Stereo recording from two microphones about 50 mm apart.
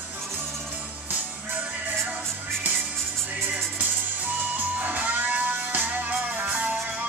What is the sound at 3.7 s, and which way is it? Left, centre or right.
Music, right.